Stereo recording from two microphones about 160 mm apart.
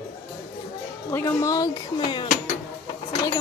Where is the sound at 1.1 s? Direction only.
15° left (ahead or behind).